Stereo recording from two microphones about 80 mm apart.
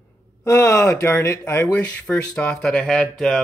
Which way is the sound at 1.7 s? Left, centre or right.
Centre.